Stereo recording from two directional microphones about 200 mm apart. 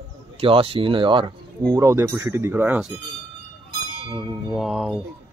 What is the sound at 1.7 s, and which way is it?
A man's voice, 15° right (ahead or behind).